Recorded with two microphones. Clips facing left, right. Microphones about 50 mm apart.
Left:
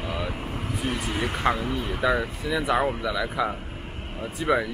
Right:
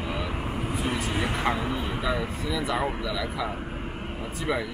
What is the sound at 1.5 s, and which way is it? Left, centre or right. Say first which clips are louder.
Speech: even; centre.